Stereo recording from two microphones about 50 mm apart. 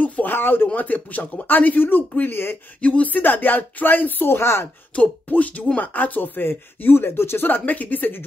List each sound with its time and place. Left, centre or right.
0.0 s a sound: left
0.7 s speech: left
4.9 s speech: left
7.4 s speech: left